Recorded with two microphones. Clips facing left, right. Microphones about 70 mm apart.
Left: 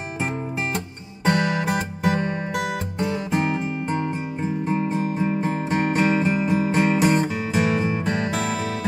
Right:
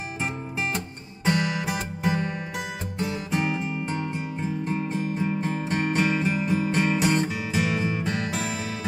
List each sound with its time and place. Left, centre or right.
1.2 s music: left